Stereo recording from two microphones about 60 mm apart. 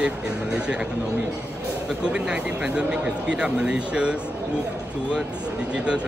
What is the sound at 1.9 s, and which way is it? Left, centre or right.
Speech, centre.